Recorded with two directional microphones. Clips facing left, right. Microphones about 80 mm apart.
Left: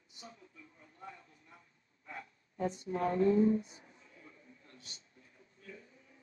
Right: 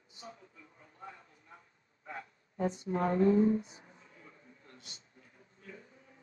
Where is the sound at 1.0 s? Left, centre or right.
Right.